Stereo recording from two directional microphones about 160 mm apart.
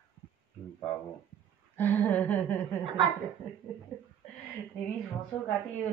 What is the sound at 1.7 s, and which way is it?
Speech, 10° left (ahead or behind).